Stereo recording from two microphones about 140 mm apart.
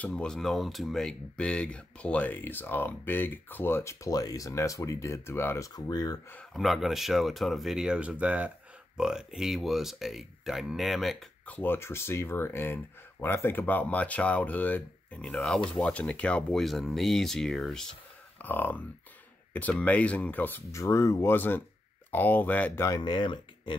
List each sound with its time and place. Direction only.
0.0 s speech: 5° left (ahead or behind); by 6.1 s 25° left (ahead or behind)
6.3 s speech: centre (ahead or behind)
11.4 s speech: 15° left (ahead or behind)
18.4 s speech: 15° left (ahead or behind)
19.8 s speech: 10° left (ahead or behind)
22.8 s speech: 30° left (ahead or behind)